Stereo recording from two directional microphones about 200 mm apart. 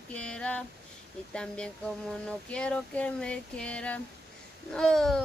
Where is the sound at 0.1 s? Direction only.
5° left (ahead or behind).